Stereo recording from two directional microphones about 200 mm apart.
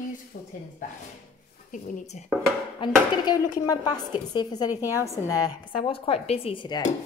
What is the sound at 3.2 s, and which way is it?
Speech, 20° left (ahead or behind).